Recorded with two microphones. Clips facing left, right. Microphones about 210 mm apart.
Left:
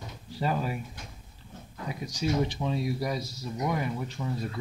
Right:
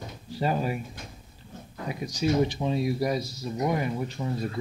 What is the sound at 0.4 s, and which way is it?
Speech, 20° right (ahead or behind).